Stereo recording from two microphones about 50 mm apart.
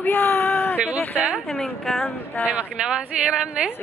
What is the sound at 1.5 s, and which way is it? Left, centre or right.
Speech, centre.